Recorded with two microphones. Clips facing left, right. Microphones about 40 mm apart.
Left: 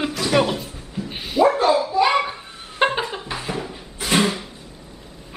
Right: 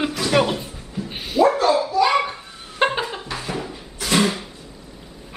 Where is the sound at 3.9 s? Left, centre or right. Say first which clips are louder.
Even; centre.